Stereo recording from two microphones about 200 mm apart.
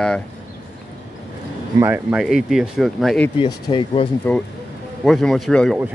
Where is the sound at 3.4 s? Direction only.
20° left (ahead or behind).